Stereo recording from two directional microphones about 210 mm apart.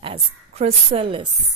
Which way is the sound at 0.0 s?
25° right (ahead or behind).